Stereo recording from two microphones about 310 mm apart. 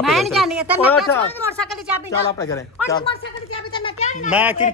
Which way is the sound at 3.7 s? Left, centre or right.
Centre.